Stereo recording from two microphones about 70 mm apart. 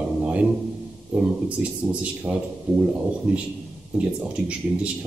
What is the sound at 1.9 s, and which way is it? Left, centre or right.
A man's voice, centre.